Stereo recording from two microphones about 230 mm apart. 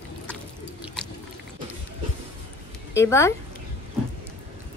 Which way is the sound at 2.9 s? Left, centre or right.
Centre.